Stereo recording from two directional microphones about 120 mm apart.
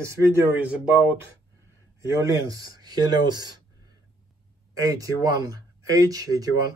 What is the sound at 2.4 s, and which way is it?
Speech, 30° right (ahead or behind).